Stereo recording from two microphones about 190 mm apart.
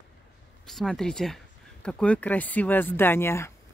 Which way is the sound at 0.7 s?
Centre (ahead or behind).